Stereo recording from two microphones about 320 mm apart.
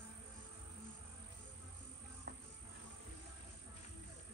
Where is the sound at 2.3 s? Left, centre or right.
Right.